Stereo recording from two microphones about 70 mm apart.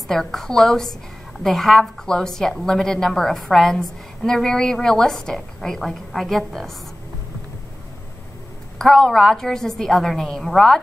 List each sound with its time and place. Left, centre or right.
0.1 s a woman's voice: centre
8.7 s a woman's voice: centre